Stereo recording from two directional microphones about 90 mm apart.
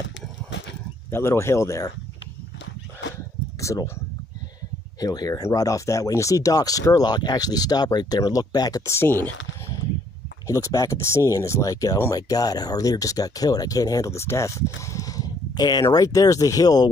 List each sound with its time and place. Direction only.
1.1 s speech: 30° left (ahead or behind)
3.6 s speech: 35° left (ahead or behind)
5.0 s speech: 45° left (ahead or behind)
8.9 s speech: 25° left (ahead or behind)
10.4 s speech: 40° left (ahead or behind)